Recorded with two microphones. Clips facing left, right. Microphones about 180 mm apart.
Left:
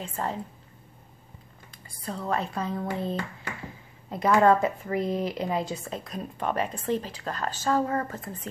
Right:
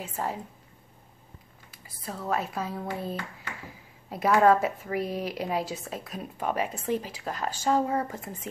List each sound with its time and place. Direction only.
0.0 s speech: 10° right (ahead or behind)
1.7 s speech: 5° right (ahead or behind)